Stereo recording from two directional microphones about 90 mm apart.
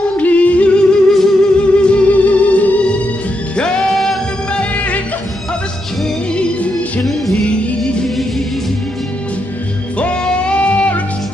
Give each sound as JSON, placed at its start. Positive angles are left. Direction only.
{"t": 0.2, "sound": "music", "side_deg": 15}
{"t": 7.4, "sound": "music", "side_deg": 10}
{"t": 9.9, "sound": "music", "side_deg": 10}